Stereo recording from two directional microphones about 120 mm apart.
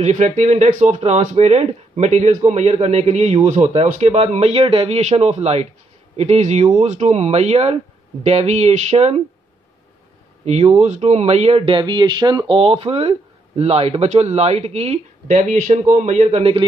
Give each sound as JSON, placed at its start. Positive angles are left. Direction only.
{"t": 0.0, "sound": "speech", "side_deg": -85}
{"t": 10.4, "sound": "speech", "side_deg": -65}